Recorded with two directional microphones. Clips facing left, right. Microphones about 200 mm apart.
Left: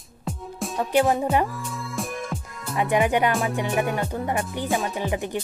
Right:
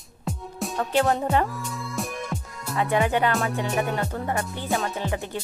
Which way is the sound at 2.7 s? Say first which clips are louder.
Left 2 dB; 15° left (ahead or behind).